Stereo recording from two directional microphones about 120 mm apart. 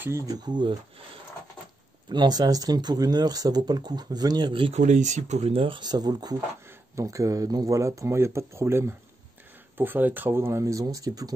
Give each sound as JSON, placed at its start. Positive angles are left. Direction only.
{"t": 0.0, "sound": "speech", "side_deg": -25}
{"t": 2.0, "sound": "speech", "side_deg": -35}
{"t": 4.7, "sound": "speech", "side_deg": -85}